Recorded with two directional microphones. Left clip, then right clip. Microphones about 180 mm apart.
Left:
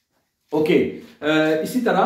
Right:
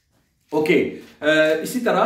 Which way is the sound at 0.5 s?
20° right (ahead or behind).